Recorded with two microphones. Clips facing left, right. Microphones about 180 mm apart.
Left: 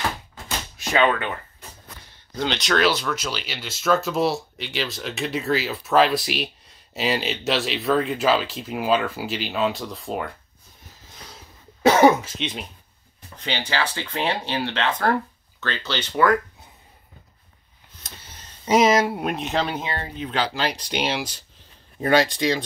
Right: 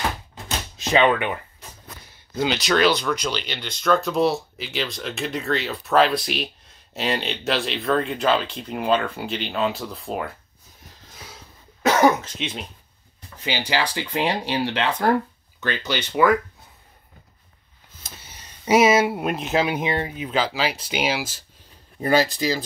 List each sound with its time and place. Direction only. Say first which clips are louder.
0.7 s speech: right 2 dB; 20° right (ahead or behind); by 10.3 s centre (ahead or behind)
12.2 s speech: left 1 dB; centre (ahead or behind)
18.0 s speech: even; 10° right (ahead or behind)